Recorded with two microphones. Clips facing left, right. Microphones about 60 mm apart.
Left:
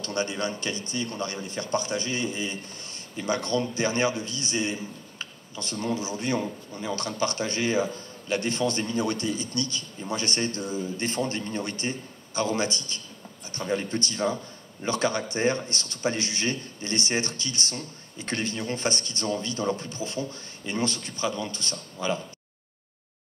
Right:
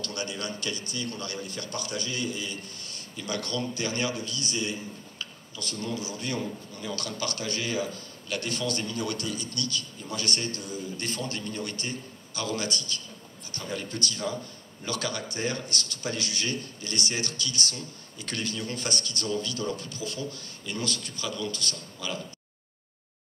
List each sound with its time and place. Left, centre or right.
0.0 s a man's voice: left